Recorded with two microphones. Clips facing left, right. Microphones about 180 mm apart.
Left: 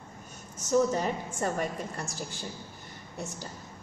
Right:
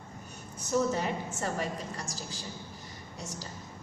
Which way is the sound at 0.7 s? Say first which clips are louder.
Left 3 dB; 45° left (ahead or behind).